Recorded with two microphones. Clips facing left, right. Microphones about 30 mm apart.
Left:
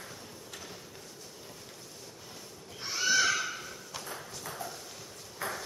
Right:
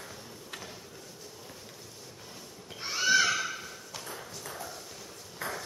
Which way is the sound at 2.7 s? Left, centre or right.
Right.